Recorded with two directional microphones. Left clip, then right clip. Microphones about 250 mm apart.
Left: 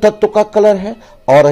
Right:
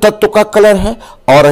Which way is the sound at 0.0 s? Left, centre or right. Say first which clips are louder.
Right 2 dB; centre.